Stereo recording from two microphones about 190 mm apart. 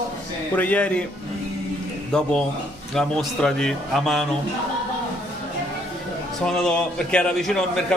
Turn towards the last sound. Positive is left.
turn(degrees=5)  # may be behind; listen again after turning